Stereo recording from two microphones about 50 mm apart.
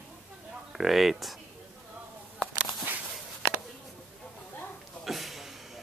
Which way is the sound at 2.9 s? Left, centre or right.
Right.